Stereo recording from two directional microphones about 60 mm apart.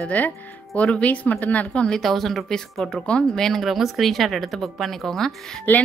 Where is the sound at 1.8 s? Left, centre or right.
Centre.